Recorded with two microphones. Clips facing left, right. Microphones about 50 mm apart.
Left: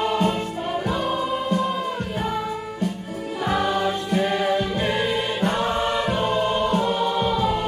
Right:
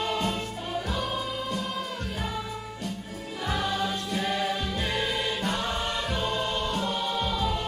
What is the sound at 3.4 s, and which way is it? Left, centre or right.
Music, left.